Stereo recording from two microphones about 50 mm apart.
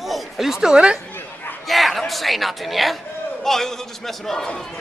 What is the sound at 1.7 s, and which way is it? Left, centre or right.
A man's voice, centre.